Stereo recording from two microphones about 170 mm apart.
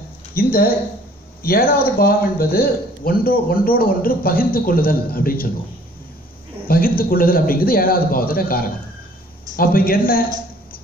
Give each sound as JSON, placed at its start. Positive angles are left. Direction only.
{"t": 0.3, "sound": "a man's voice", "side_deg": 60}
{"t": 6.7, "sound": "a man's voice", "side_deg": 60}